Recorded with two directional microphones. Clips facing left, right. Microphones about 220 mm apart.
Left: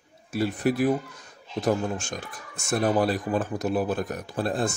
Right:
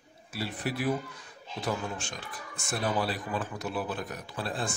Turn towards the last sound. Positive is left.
turn(degrees=45)  # may be behind; listen again after turning